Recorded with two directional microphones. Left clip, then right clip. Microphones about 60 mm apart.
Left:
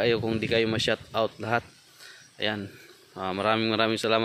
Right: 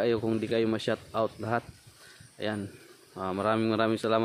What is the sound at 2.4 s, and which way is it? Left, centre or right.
Speech, centre.